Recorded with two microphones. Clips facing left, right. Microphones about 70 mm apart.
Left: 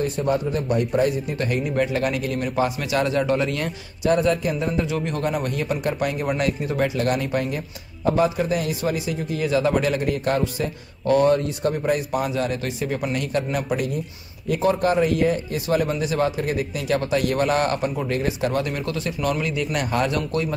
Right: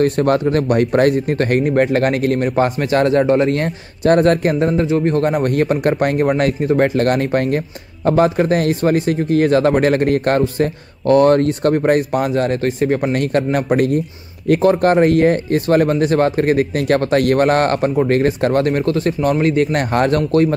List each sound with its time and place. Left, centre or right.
0.0 s speech: right
4.8 s speech: right
19.1 s a man's voice: right
19.4 s speech: right